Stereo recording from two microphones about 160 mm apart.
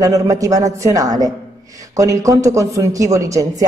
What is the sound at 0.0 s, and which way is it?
A woman's voice, 20° right (ahead or behind).